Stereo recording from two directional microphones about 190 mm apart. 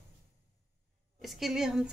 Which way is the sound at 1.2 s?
Centre (ahead or behind).